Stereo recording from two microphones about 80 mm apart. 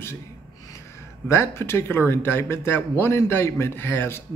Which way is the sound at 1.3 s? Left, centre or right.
Left.